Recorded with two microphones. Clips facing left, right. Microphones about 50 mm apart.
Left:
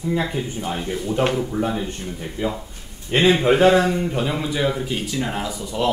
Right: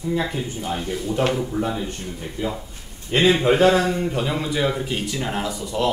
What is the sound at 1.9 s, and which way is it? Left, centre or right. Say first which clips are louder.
A man's voice: left 1 dB; centre.